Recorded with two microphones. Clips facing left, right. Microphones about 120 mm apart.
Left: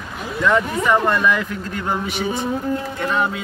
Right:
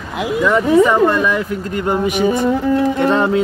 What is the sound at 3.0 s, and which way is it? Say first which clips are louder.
Music: right 7 dB; 30° right (ahead or behind).